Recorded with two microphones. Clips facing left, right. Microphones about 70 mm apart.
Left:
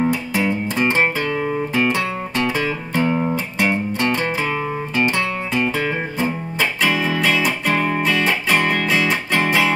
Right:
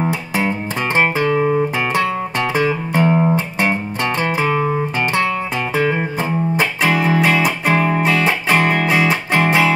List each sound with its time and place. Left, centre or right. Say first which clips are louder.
0.4 s music: even; right
7.1 s music: right 4 dB; right
8.5 s music: right 4 dB; right